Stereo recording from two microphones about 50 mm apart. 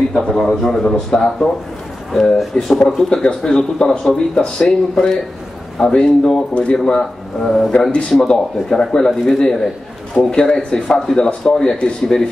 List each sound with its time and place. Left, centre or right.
0.1 s speech: centre